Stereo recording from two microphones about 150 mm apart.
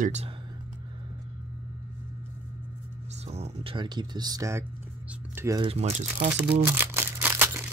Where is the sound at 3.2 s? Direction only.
45° right (ahead or behind); by 4.6 s 20° right (ahead or behind).